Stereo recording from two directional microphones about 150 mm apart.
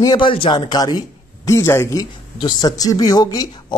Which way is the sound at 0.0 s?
30° left (ahead or behind).